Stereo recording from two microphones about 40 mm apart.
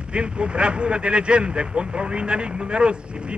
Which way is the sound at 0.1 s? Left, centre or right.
Right.